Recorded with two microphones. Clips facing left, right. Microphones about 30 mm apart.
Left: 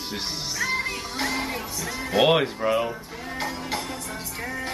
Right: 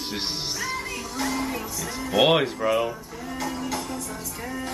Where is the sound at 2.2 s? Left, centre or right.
Centre.